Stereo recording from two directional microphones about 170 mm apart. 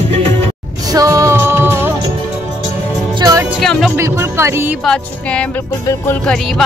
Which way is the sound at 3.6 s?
Centre (ahead or behind).